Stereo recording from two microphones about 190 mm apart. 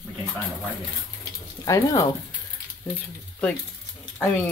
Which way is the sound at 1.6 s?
20° left (ahead or behind).